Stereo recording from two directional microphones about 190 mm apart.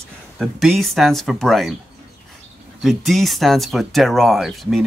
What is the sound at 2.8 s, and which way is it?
Speech, centre (ahead or behind).